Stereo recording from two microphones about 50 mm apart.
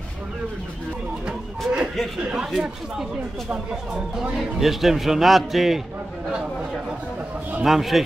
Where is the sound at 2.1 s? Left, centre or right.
Centre.